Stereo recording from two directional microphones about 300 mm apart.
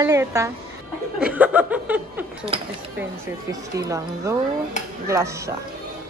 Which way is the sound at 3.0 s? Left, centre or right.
Centre.